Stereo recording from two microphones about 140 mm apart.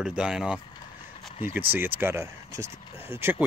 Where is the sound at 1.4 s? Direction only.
15° right (ahead or behind).